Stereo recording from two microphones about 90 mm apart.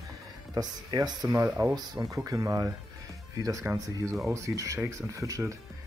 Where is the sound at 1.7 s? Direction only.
50° right (ahead or behind).